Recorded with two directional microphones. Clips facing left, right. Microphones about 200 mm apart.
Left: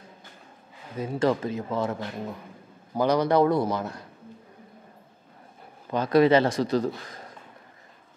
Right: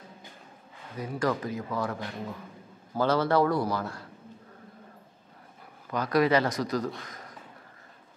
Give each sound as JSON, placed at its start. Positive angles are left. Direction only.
{"t": 0.9, "sound": "a man's voice", "side_deg": 25}
{"t": 5.9, "sound": "a man's voice", "side_deg": 25}
{"t": 7.1, "sound": "a sound", "side_deg": 30}